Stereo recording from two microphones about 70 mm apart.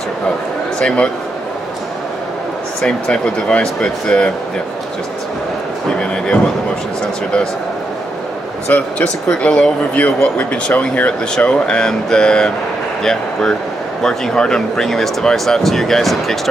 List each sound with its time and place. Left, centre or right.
0.7 s speech: centre
2.8 s speech: centre
5.9 s speech: centre
8.6 s speech: left; by 16.3 s centre